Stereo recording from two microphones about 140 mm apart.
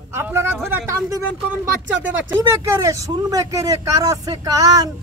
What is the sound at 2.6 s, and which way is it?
Speech, 20° right (ahead or behind).